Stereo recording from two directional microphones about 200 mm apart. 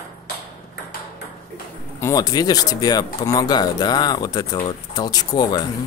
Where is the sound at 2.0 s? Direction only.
20° left (ahead or behind).